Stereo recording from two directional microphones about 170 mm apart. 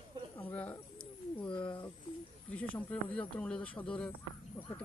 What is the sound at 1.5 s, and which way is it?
Speech, 30° left (ahead or behind).